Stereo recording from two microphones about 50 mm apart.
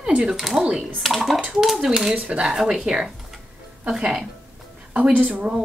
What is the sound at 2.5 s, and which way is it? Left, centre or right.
Speech, centre.